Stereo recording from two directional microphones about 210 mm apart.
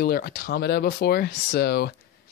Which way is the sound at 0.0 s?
45° left (ahead or behind).